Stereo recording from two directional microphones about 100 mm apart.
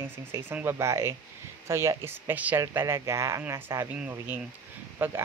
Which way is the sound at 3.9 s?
20° right (ahead or behind).